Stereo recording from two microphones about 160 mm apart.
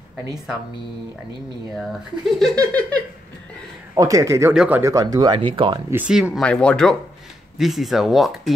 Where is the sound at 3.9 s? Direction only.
20° right (ahead or behind).